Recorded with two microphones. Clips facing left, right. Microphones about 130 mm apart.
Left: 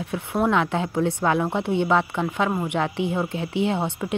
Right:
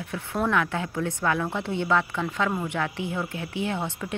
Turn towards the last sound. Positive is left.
turn(degrees=20)  # may be behind; listen again after turning